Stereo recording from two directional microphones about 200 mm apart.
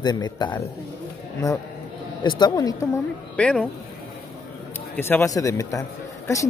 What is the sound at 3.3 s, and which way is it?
Speech, 5° left (ahead or behind).